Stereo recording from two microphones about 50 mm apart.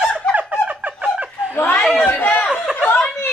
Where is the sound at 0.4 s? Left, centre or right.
Right.